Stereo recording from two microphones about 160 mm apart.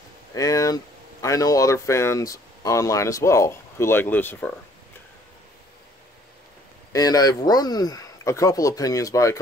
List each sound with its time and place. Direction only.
0.3 s speech: 20° left (ahead or behind)
6.9 s speech: 25° left (ahead or behind)